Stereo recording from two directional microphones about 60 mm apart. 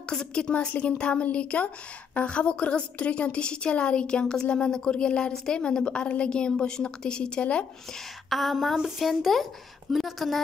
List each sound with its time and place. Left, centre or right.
0.1 s a woman's voice: centre
5.3 s speech: centre
5.6 s a woman's voice: centre
8.3 s speech: centre